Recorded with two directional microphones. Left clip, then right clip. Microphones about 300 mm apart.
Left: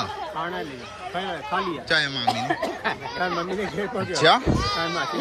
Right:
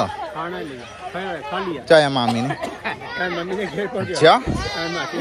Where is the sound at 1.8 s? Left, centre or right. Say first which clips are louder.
Right 10 dB; centre.